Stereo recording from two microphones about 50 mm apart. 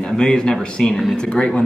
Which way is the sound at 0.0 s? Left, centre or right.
Centre.